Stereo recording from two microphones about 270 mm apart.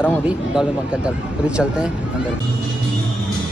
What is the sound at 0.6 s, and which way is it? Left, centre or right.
Speech, centre.